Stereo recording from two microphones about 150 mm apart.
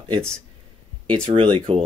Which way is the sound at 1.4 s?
40° right (ahead or behind).